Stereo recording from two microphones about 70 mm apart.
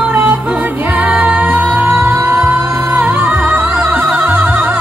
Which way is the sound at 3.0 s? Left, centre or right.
Right.